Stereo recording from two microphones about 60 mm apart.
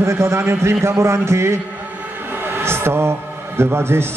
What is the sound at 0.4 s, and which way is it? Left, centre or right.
A man's voice, right.